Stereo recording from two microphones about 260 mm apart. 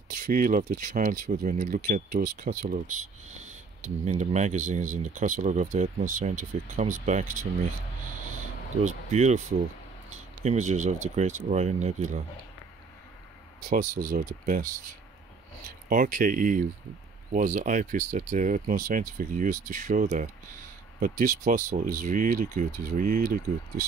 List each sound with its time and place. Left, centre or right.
0.1 s speech: right
8.8 s speech: right
14.0 s speech: right
15.9 s speech: right